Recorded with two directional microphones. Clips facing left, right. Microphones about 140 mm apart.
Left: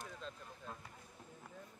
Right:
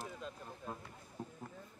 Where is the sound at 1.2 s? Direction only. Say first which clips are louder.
Right 13 dB; 40° right (ahead or behind).